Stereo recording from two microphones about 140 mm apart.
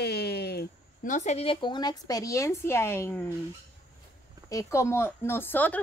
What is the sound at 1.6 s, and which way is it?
Speech, 30° left (ahead or behind).